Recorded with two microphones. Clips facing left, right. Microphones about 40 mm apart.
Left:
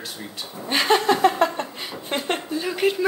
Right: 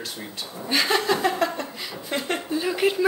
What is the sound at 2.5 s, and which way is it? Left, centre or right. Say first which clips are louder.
Speech: right 1 dB; centre.